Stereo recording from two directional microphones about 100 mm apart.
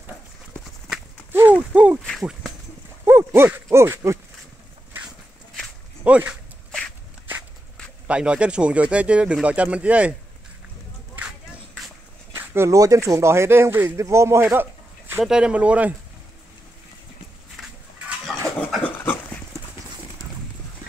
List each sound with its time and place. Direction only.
1.3 s a sound: 20° right (ahead or behind)
3.1 s a sound: 25° right (ahead or behind)
3.6 s speech: 25° right (ahead or behind)
6.0 s speech: 15° right (ahead or behind)
8.1 s speech: 10° right (ahead or behind)
12.4 s speech: 30° right (ahead or behind)
15.2 s speech: 10° right (ahead or behind)
17.6 s livestock: centre (ahead or behind)
18.8 s dog: 15° left (ahead or behind)